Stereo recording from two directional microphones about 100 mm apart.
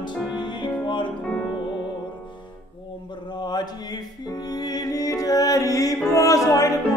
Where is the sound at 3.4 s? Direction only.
45° left (ahead or behind).